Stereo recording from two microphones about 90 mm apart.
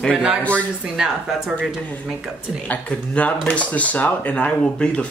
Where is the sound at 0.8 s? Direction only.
5° right (ahead or behind).